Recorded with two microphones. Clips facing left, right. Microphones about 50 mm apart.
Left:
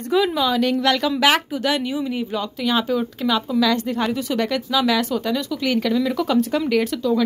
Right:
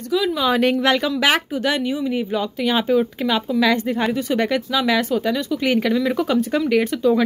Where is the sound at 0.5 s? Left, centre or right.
Right.